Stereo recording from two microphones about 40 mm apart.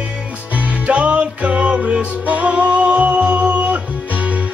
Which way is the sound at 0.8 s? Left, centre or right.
Right.